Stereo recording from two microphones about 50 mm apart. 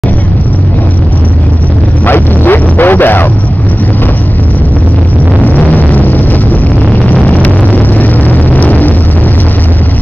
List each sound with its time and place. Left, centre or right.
2.0 s dog: left
5.4 s music: left
7.2 s vehicle: left